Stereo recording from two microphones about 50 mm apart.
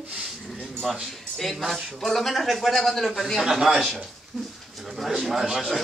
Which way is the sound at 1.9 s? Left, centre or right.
Centre.